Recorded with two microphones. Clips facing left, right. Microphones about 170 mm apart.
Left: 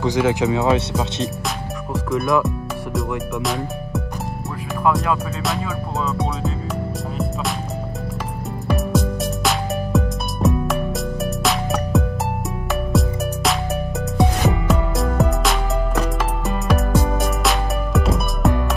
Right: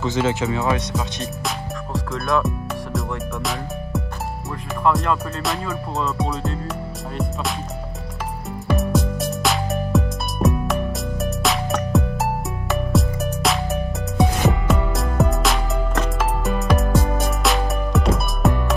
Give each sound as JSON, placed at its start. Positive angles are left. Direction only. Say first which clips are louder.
{"t": 0.0, "sound": "speech", "louder": "left 3 dB", "side_deg": 15}
{"t": 4.8, "sound": "music", "louder": "even", "side_deg": 0}
{"t": 8.6, "sound": "music", "louder": "even", "side_deg": 0}